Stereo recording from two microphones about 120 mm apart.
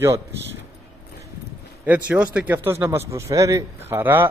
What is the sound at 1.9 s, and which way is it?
Speech, 10° right (ahead or behind).